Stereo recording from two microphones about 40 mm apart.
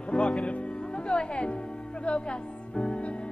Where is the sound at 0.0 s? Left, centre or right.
Left.